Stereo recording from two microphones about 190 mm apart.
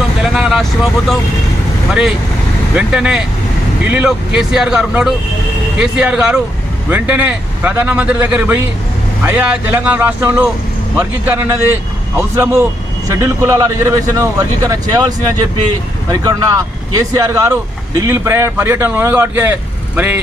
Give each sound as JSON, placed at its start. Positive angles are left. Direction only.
{"t": 0.2, "sound": "vehicle", "side_deg": 0}
{"t": 2.7, "sound": "speech", "side_deg": -5}